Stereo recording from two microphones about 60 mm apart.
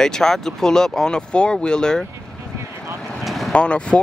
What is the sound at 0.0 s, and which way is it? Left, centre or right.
Speech, centre.